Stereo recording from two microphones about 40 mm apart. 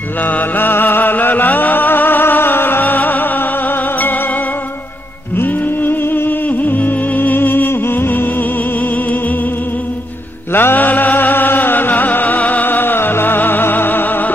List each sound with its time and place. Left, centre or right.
0.2 s music: left
2.8 s music: left
5.4 s music: left
10.5 s music: left
12.6 s music: left